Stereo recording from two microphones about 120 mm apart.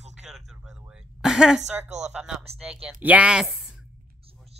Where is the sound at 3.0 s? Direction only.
10° right (ahead or behind).